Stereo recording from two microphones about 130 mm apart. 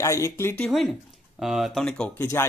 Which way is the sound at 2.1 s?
20° left (ahead or behind).